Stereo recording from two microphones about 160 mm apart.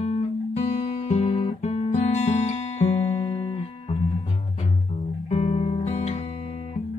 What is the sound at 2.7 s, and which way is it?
Music, 40° left (ahead or behind).